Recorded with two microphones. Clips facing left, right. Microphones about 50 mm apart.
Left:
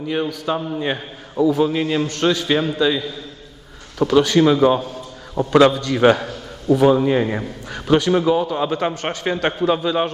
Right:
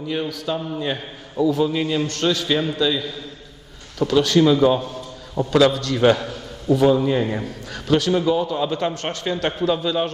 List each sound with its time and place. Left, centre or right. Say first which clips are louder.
0.1 s a man's voice: left 3 dB; centre
4.8 s a sound: even; centre
5.7 s a man's voice: left 2 dB; centre